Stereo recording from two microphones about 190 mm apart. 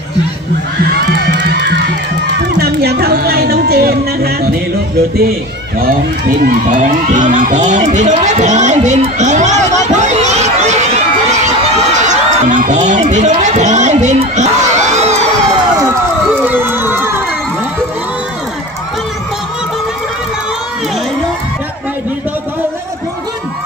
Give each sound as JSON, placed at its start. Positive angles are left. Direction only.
{"t": 1.3, "sound": "crowd", "side_deg": -60}
{"t": 2.6, "sound": "music", "side_deg": -55}
{"t": 5.8, "sound": "run", "side_deg": -50}
{"t": 16.3, "sound": "run", "side_deg": -10}